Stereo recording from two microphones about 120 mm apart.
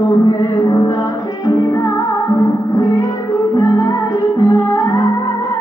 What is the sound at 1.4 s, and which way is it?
Music, 25° left (ahead or behind).